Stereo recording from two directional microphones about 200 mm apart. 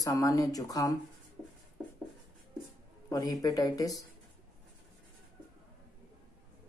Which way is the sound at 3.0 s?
20° left (ahead or behind).